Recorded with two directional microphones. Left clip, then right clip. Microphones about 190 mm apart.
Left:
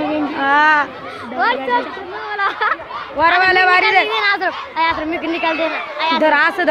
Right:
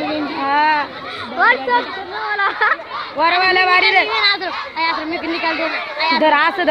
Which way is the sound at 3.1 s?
10° left (ahead or behind).